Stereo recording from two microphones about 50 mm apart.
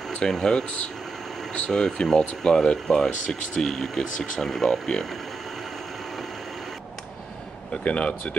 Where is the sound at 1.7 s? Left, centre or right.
Centre.